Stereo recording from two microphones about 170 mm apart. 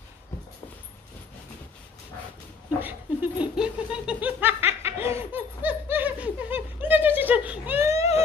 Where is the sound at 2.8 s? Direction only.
10° right (ahead or behind).